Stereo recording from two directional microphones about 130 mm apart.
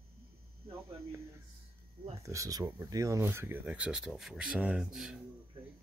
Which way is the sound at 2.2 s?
25° right (ahead or behind).